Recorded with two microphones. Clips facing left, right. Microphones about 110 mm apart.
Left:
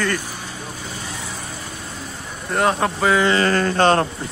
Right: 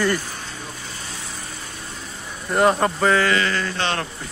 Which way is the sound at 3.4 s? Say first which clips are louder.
Left 6 dB; 45° left (ahead or behind).